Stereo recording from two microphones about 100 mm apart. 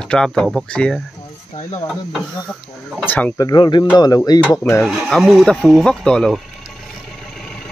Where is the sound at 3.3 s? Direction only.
45° left (ahead or behind).